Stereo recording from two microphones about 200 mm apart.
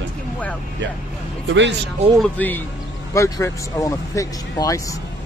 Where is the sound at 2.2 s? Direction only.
10° left (ahead or behind).